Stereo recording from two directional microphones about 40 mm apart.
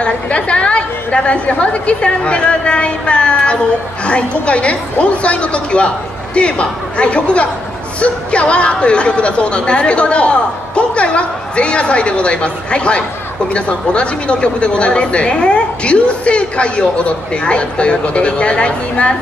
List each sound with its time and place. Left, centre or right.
0.0 s speech: left